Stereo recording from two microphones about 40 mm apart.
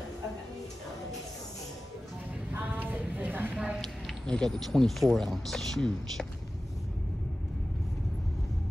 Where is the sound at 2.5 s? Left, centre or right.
Right.